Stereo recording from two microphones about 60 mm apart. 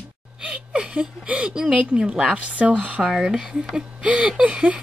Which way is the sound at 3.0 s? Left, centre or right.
Centre.